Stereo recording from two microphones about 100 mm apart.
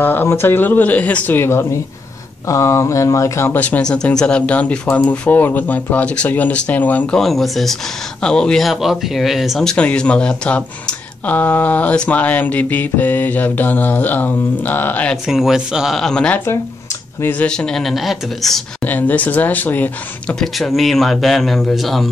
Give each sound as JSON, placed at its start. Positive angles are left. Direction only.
{"t": 0.0, "sound": "speech", "side_deg": 20}
{"t": 7.2, "sound": "speech", "side_deg": 0}
{"t": 15.2, "sound": "speech", "side_deg": -5}
{"t": 17.2, "sound": "speech", "side_deg": 20}
{"t": 17.5, "sound": "speech", "side_deg": 5}
{"t": 18.9, "sound": "speech", "side_deg": 15}
{"t": 20.3, "sound": "speech", "side_deg": 0}